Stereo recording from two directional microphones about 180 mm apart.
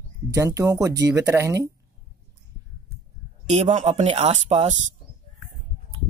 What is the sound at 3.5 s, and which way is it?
Speech, 40° right (ahead or behind).